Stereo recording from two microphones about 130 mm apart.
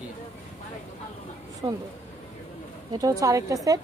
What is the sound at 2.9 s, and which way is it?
Speech, 25° right (ahead or behind).